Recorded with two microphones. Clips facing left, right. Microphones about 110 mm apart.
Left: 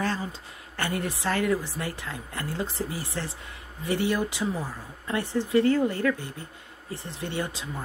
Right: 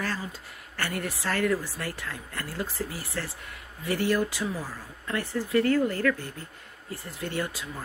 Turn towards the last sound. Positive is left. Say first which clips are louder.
# even
turn(degrees=25)  # may be behind; listen again after turning